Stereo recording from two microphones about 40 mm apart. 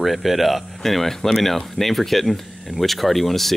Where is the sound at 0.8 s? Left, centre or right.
Centre.